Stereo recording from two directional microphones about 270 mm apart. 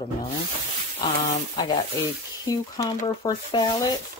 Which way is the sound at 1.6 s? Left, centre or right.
Centre.